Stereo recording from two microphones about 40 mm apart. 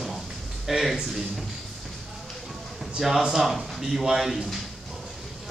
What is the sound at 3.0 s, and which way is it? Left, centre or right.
Speech, centre.